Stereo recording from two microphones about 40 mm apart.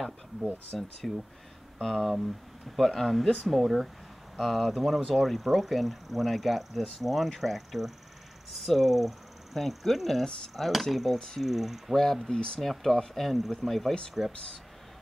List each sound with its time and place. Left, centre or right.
0.7 s speech: centre
2.1 s speech: centre
2.8 s speech: centre
11.1 s speech: centre
11.4 s speech: centre
12.2 s speech: centre
12.5 s speech: centre
14.3 s speech: centre